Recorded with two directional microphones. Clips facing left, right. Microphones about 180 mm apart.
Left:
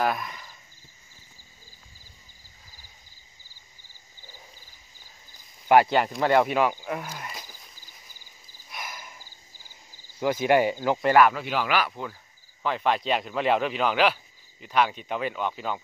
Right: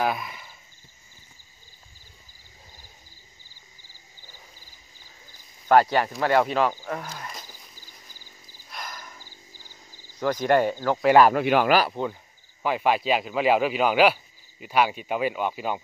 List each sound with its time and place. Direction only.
0.0 s cricket: 5° right (ahead or behind)
5.7 s speech: 15° left (ahead or behind)
8.6 s a sound: 5° left (ahead or behind)
10.1 s speech: 10° left (ahead or behind)
11.3 s speech: 55° right (ahead or behind)
11.9 s speech: 20° right (ahead or behind)
12.6 s a man's voice: 10° right (ahead or behind)